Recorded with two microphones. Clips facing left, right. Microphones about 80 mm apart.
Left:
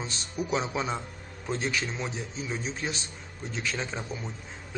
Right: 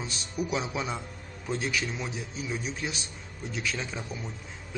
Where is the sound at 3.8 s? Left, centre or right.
Left.